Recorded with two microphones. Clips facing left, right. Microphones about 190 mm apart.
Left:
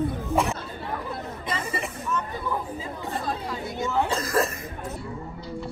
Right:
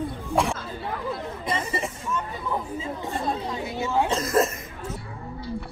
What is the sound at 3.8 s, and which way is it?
Throat clearing, 15° right (ahead or behind).